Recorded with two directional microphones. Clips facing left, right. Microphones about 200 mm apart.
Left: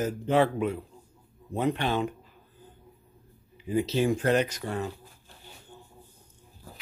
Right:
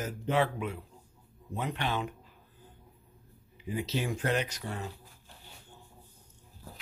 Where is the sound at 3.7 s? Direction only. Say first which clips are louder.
Left 8 dB; 30° left (ahead or behind).